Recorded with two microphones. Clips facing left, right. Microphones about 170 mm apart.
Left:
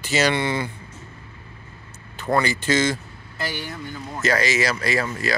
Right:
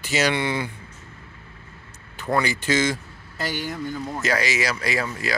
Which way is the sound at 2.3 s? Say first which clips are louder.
Left 1 dB; 10° right (ahead or behind).